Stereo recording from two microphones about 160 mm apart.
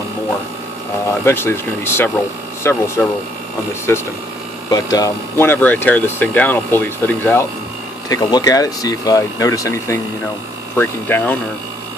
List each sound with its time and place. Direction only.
1.2 s speech: 15° left (ahead or behind)
8.1 s speech: 25° left (ahead or behind)